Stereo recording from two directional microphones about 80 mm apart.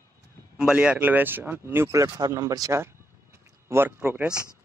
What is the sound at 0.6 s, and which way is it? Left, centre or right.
Speech, centre.